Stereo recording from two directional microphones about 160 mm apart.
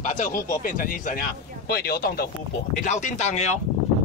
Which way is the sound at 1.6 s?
70° left (ahead or behind).